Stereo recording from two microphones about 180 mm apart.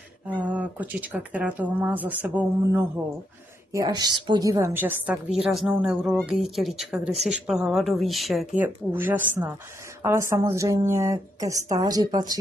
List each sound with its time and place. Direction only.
0.4 s speech: 5° right (ahead or behind)
3.7 s a woman's voice: 20° right (ahead or behind); by 8.6 s centre (ahead or behind)
8.6 s speech: 10° right (ahead or behind)